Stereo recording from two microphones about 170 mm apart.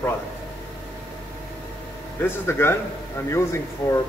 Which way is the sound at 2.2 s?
15° left (ahead or behind).